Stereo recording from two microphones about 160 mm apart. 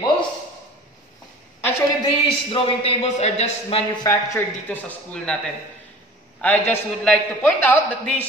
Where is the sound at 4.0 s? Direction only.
20° left (ahead or behind).